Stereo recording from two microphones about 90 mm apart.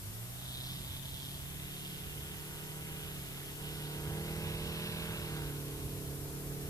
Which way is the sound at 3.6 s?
40° left (ahead or behind).